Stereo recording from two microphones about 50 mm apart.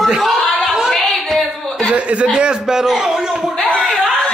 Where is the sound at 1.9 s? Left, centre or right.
Right.